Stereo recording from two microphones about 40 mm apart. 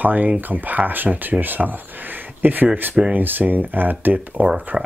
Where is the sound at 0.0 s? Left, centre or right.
Right.